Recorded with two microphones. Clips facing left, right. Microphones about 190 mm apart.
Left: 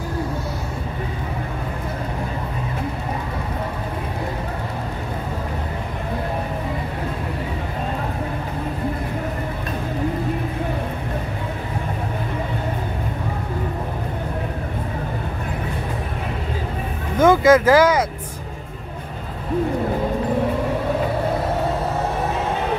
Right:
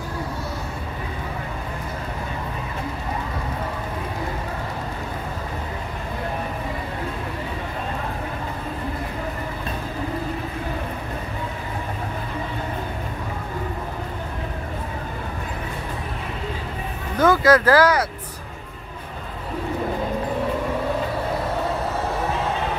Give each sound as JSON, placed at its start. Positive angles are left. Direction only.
{"t": 17.2, "sound": "speech", "side_deg": 20}